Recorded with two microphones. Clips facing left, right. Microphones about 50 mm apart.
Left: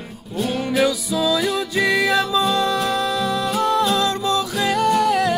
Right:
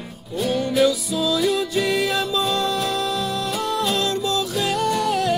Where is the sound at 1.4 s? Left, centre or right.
Left.